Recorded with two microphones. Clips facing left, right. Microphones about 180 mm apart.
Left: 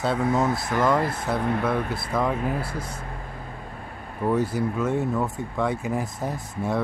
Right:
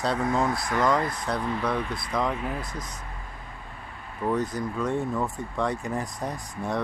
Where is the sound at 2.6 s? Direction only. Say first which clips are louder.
Left 5 dB; 30° left (ahead or behind).